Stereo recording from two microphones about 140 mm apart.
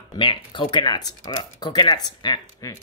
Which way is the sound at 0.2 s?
35° left (ahead or behind).